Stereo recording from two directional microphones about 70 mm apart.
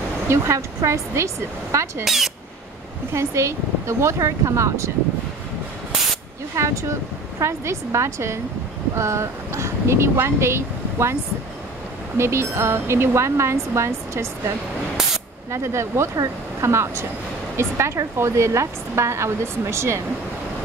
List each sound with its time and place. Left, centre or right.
0.3 s speech: right
2.0 s a sound: centre
3.1 s speech: right
6.5 s speech: right
12.2 s a woman's voice: right
15.5 s a woman's voice: right